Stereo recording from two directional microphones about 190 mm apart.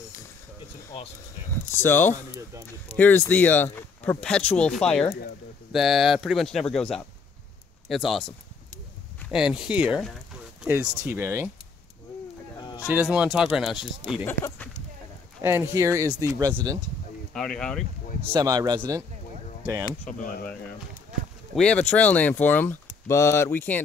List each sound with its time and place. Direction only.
1.7 s speech: 10° left (ahead or behind)
9.3 s speech: 5° right (ahead or behind)
12.5 s a sound: 20° left (ahead or behind)
12.8 s speech: 5° right (ahead or behind)
14.2 s speech: 15° left (ahead or behind)
15.7 s speech: 15° right (ahead or behind)
17.3 s speech: 5° left (ahead or behind)
18.3 s speech: 20° right (ahead or behind)
20.1 s speech: 45° left (ahead or behind)
21.1 s a sound: centre (ahead or behind)
21.5 s speech: 5° left (ahead or behind)